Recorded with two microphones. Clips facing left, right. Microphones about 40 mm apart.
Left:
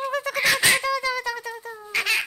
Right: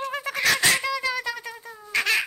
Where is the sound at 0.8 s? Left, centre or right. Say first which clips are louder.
Left 2 dB; centre.